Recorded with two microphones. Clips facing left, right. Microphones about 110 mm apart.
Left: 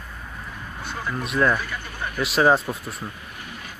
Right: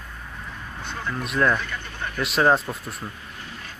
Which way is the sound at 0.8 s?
10° left (ahead or behind).